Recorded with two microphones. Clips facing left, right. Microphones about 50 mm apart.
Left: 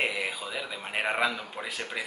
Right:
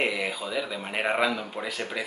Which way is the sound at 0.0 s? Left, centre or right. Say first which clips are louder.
Right 2 dB; centre.